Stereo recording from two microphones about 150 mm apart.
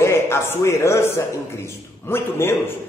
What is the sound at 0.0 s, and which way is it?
A man's voice, 15° left (ahead or behind).